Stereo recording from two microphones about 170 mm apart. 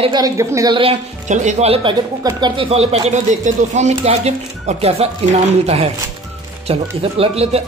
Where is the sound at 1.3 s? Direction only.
45° right (ahead or behind).